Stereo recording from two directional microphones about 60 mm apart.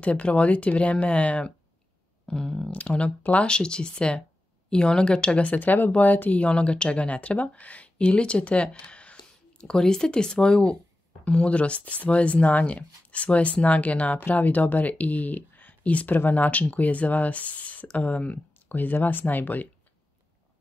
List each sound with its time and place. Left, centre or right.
0.0 s speech: left